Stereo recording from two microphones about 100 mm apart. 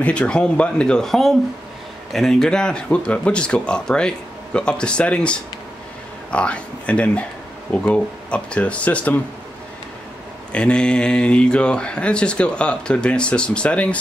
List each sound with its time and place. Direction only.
0.0 s speech: 10° left (ahead or behind)
10.5 s speech: 10° left (ahead or behind)